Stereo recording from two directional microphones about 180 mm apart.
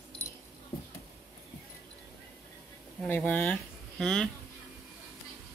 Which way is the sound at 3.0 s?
5° left (ahead or behind).